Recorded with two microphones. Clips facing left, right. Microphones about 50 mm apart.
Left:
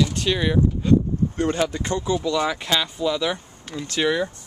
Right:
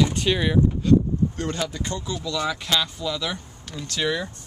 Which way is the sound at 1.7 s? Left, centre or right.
Left.